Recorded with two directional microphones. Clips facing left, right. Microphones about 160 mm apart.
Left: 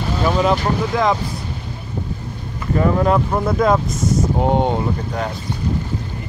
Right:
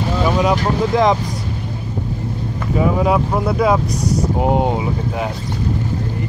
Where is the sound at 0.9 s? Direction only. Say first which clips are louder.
Right 4 dB; 20° right (ahead or behind).